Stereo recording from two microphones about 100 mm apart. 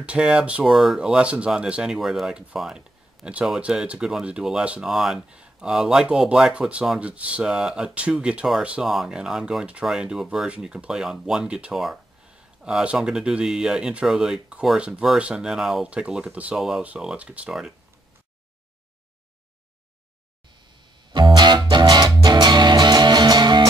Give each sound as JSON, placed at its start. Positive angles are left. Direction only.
{"t": 0.0, "sound": "speech", "side_deg": -10}
{"t": 16.5, "sound": "speech", "side_deg": -5}
{"t": 21.1, "sound": "music", "side_deg": -50}